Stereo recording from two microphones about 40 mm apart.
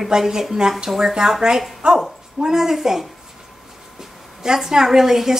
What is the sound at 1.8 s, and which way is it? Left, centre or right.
Speech, right.